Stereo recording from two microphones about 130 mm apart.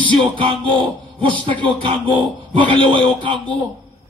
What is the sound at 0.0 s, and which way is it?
Music, 40° right (ahead or behind).